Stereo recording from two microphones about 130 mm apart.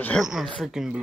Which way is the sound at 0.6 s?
5° right (ahead or behind).